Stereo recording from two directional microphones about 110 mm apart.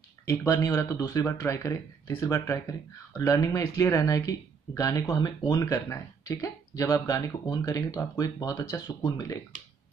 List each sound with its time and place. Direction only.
0.3 s speech: 20° left (ahead or behind)